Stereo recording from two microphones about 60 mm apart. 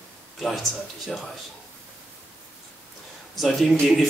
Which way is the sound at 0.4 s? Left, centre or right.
Centre.